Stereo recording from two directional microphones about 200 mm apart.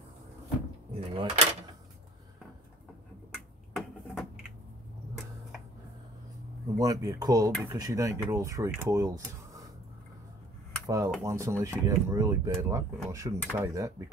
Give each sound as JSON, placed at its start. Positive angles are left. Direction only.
{"t": 0.9, "sound": "door", "side_deg": -30}
{"t": 3.7, "sound": "a sound", "side_deg": 0}
{"t": 6.8, "sound": "speech", "side_deg": -15}
{"t": 10.9, "sound": "speech", "side_deg": -15}